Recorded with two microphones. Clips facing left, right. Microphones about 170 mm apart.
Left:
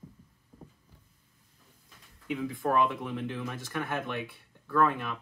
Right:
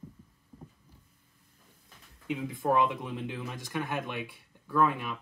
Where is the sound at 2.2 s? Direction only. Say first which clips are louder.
Right 1 dB; 20° right (ahead or behind).